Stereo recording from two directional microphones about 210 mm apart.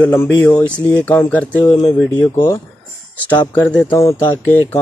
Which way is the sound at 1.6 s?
20° left (ahead or behind).